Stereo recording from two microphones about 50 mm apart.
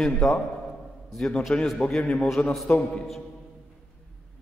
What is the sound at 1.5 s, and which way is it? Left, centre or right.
A man's voice, centre.